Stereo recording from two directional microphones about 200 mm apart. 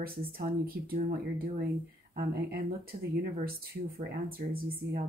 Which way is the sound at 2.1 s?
50° right (ahead or behind).